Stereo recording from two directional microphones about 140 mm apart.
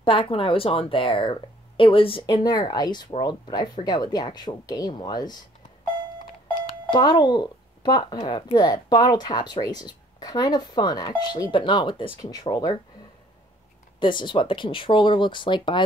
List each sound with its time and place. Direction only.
0.0 s speech: 40° left (ahead or behind)
6.6 s a woman's voice: 35° left (ahead or behind)
13.9 s speech: 35° left (ahead or behind)